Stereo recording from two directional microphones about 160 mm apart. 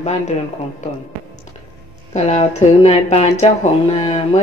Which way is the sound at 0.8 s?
50° left (ahead or behind).